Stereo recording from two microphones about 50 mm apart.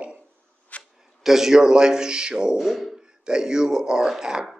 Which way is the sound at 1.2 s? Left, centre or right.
Centre.